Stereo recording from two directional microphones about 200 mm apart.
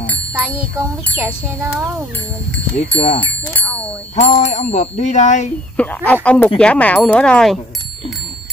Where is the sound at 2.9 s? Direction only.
25° left (ahead or behind).